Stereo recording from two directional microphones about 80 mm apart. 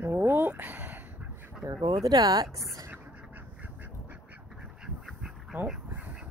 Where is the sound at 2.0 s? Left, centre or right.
Right.